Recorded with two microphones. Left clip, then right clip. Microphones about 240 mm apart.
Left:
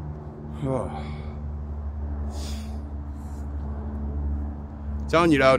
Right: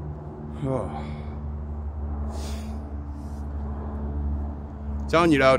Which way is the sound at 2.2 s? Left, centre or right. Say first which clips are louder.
Right 1 dB; centre.